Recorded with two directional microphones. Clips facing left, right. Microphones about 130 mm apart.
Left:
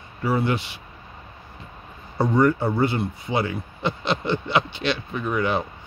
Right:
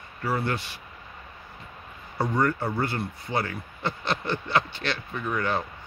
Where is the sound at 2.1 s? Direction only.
20° left (ahead or behind).